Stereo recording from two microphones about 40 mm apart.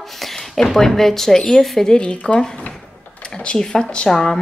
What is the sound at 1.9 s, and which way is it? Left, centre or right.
Speech, left.